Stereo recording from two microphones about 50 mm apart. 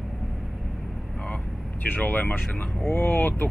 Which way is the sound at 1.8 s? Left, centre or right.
Left.